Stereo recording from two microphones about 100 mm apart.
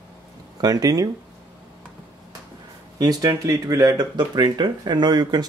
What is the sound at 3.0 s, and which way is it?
Speech, 40° right (ahead or behind).